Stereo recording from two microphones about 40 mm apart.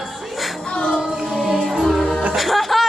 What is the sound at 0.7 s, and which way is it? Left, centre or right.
Music, left.